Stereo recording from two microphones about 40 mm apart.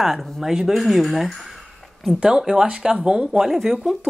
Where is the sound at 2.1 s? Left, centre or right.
Centre.